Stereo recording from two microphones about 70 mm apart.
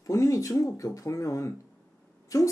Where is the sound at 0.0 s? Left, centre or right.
Left.